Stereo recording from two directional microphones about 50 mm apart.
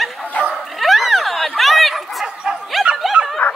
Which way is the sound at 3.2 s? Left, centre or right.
Right.